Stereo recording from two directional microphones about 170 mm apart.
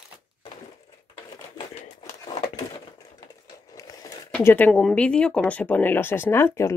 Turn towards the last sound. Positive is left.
turn(degrees=15)  # may be behind; listen again after turning